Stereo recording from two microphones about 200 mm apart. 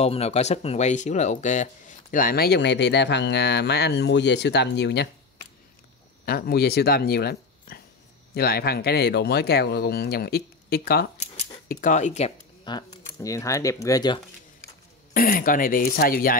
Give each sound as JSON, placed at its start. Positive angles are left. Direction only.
{"t": 0.0, "sound": "speech", "side_deg": 30}
{"t": 6.2, "sound": "speech", "side_deg": 50}
{"t": 11.7, "sound": "speech", "side_deg": 40}
{"t": 12.7, "sound": "speech", "side_deg": 20}
{"t": 15.1, "sound": "speech", "side_deg": 45}